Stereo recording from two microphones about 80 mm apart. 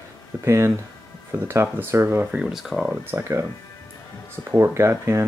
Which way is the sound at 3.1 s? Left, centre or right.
Right.